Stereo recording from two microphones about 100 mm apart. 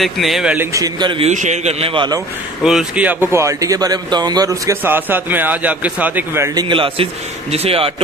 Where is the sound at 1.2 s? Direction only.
85° right.